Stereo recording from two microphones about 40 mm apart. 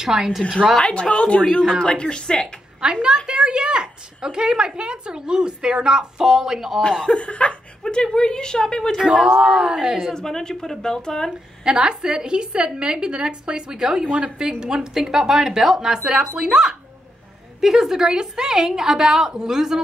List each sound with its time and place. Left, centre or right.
0.0 s a woman's voice: centre
0.8 s a woman's voice: left
2.8 s a woman's voice: right
7.2 s a woman's voice: left
9.0 s a woman's voice: centre
10.1 s speech: centre
11.6 s a woman's voice: right
14.0 s a woman's voice: right
14.4 s a woman's voice: centre